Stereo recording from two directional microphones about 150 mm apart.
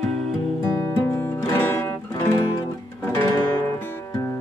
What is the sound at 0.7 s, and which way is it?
Music, 25° left (ahead or behind).